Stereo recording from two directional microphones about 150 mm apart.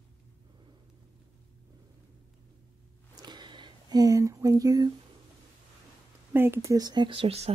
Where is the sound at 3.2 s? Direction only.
30° right (ahead or behind).